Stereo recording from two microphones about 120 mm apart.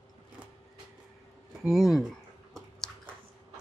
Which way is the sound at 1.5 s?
5° right (ahead or behind).